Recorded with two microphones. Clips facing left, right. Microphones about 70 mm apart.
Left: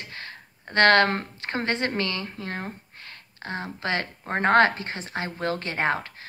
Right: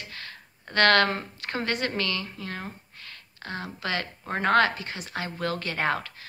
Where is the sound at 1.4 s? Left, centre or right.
Left.